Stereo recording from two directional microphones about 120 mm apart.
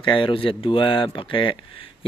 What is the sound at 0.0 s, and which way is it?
Speech, 45° left (ahead or behind).